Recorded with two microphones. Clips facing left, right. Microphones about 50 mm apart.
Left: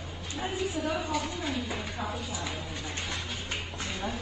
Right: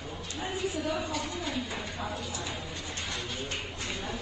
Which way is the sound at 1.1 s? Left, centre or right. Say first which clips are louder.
Left 2 dB; centre.